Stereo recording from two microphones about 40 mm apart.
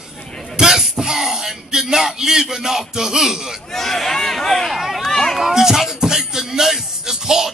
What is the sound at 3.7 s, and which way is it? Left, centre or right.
Speech, centre.